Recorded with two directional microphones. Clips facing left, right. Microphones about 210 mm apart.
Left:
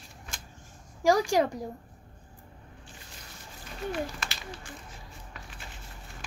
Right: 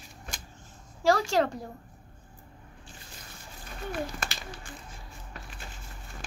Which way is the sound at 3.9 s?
50° right (ahead or behind).